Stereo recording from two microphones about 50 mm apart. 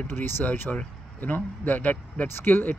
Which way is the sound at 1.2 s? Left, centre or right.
Left.